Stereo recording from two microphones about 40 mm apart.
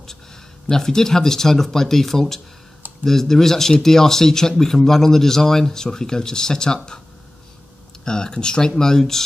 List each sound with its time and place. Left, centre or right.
0.7 s speech: centre
8.0 s speech: centre